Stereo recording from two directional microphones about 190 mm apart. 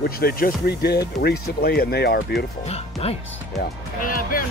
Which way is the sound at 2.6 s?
35° left (ahead or behind).